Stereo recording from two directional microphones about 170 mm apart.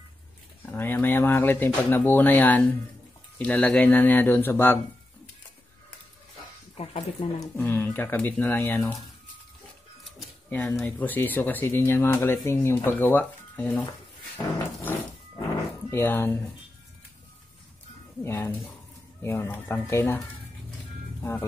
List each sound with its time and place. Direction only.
0.7 s speech: 10° left (ahead or behind)
6.8 s speech: 35° left (ahead or behind)
7.3 s speech: 15° left (ahead or behind)
10.5 s speech: 10° left (ahead or behind)
14.8 s a sound: 10° left (ahead or behind)
15.9 s speech: 15° left (ahead or behind)
18.2 s speech: 15° left (ahead or behind)
21.2 s speech: 15° left (ahead or behind)